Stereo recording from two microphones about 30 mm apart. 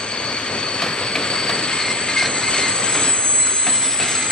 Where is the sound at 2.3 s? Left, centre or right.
Left.